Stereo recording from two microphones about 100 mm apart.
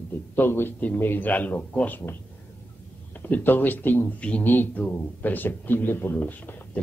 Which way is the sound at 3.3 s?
20° left (ahead or behind).